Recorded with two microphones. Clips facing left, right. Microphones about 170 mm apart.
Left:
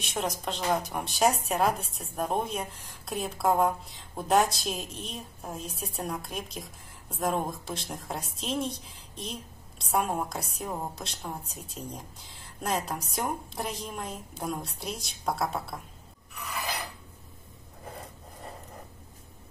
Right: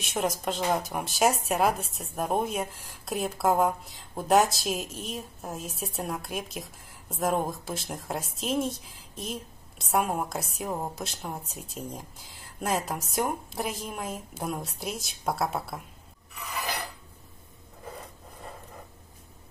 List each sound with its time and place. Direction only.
0.0 s speech: centre (ahead or behind)